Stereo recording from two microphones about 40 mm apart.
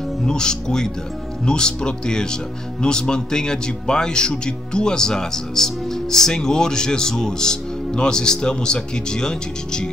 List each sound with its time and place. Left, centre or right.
0.2 s speech: centre